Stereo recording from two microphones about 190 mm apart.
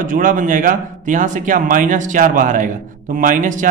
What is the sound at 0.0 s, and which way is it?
A man's voice, 45° right (ahead or behind).